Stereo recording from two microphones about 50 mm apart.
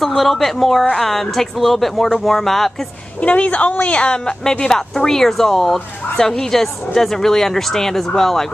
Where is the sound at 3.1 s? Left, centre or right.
Left.